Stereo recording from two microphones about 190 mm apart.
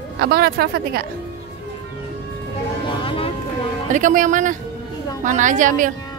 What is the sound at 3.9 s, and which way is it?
A woman's voice, 45° right (ahead or behind).